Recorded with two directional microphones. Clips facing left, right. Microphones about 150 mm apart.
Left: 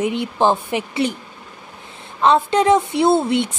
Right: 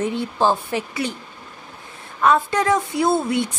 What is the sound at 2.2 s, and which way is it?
Speech, 25° left (ahead or behind).